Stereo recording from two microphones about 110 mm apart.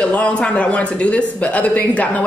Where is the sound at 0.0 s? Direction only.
10° left (ahead or behind).